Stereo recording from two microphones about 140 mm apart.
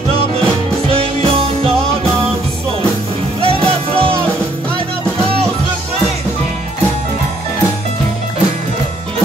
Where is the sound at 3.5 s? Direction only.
40° right (ahead or behind).